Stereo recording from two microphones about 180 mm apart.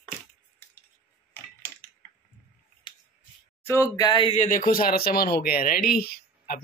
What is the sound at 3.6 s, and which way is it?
Speech, 15° left (ahead or behind).